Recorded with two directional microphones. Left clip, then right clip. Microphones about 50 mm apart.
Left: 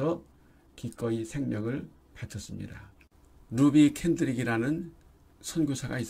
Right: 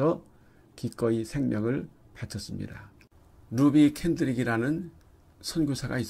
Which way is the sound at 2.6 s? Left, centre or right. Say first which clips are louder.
Right 3 dB; right.